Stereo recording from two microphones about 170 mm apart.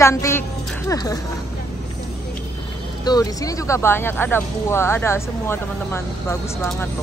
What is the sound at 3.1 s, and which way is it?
Speech, 20° left (ahead or behind).